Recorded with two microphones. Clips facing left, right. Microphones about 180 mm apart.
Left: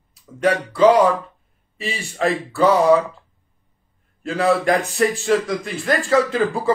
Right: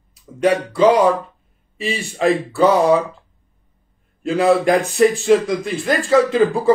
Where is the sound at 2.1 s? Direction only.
15° right (ahead or behind).